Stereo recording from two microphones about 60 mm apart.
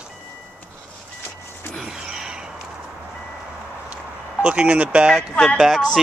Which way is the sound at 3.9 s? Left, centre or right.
Centre.